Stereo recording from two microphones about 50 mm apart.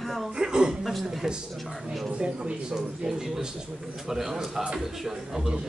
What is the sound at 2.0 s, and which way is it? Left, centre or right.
Speech, right.